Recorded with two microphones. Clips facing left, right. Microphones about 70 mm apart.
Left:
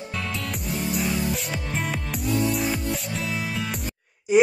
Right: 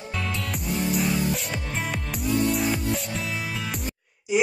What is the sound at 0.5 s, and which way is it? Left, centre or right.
Music, centre.